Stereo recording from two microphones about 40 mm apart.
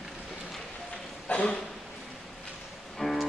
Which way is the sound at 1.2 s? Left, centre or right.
Left.